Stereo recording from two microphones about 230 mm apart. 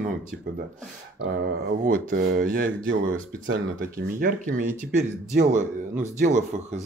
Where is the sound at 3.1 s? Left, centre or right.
Right.